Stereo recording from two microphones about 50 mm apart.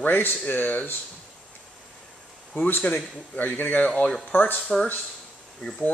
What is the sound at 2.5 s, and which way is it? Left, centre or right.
Speech, left.